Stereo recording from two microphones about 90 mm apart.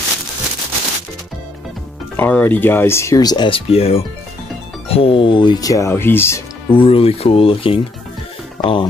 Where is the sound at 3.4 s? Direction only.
85° left; by 5.6 s 65° left (ahead or behind).